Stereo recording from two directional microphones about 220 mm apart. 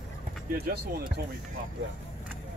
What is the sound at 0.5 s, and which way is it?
Speech, 45° right (ahead or behind).